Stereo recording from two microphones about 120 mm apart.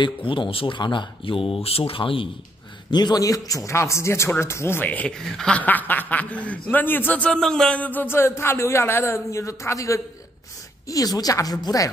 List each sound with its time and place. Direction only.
0.0 s speech: 45° left (ahead or behind)
2.9 s a man's voice: 35° left (ahead or behind)